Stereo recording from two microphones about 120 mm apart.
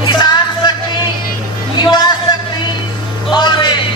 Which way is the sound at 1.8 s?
35° left (ahead or behind).